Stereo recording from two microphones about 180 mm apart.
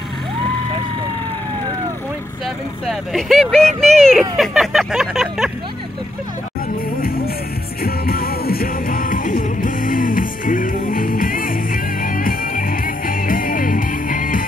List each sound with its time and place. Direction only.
2.4 s speech: centre (ahead or behind)
7.0 s music: 55° left (ahead or behind)